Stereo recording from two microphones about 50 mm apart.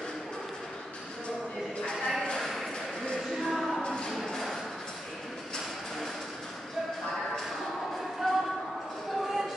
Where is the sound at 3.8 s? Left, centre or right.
Centre.